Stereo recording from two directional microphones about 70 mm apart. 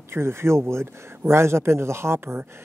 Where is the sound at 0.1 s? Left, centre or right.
Right.